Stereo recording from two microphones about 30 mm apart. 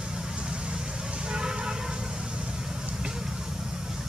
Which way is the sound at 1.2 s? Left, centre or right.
Right.